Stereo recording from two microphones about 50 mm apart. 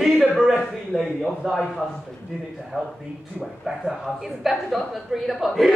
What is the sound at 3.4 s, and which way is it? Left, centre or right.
A woman's voice, centre.